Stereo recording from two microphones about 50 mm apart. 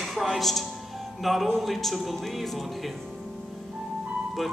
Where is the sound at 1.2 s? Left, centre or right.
Centre.